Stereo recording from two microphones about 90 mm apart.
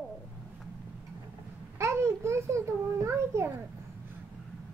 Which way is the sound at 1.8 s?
30° right (ahead or behind).